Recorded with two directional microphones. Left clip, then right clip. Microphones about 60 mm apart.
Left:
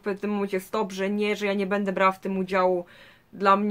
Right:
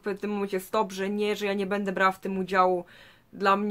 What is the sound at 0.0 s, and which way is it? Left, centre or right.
Speech, right.